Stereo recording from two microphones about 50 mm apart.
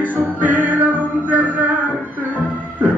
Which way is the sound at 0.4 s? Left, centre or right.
Right.